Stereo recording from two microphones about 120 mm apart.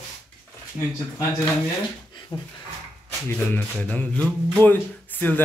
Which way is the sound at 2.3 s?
30° left (ahead or behind).